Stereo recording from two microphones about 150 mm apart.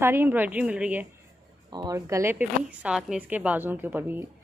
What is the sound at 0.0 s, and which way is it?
A woman's voice, 15° right (ahead or behind).